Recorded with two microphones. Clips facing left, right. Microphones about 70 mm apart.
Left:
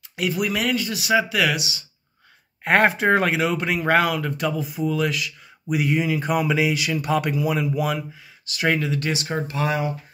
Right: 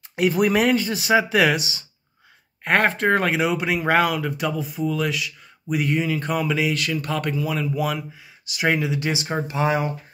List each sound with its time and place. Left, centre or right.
0.1 s speech: right
2.6 s speech: centre
8.5 s speech: centre